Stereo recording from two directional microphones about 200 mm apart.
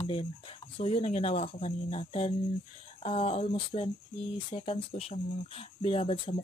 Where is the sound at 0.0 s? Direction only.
25° left (ahead or behind).